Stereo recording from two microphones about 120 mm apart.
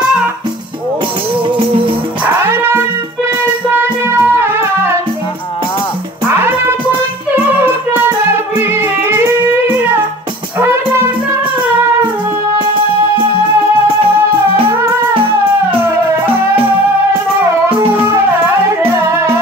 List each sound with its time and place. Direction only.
2.2 s music: 20° right (ahead or behind)
6.4 s music: 20° right (ahead or behind)
8.3 s music: 20° right (ahead or behind)
12.5 s music: 45° right (ahead or behind)
15.1 s music: 50° right (ahead or behind)
18.8 s music: 20° right (ahead or behind)